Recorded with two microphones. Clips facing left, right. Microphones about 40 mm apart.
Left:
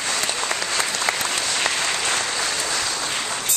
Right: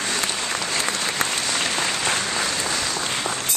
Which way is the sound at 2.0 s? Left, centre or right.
Centre.